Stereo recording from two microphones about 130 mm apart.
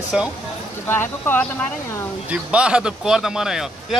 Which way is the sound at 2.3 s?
10° right (ahead or behind).